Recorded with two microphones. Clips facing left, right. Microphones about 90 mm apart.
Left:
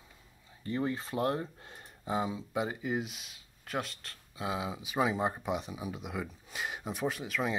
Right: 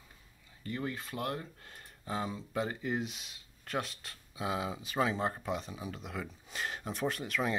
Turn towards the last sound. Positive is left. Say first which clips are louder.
# even
turn(degrees=0)  # may be behind; listen again after turning